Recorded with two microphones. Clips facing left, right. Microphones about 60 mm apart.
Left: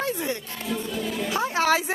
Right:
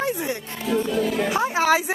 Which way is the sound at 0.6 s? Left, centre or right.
Right.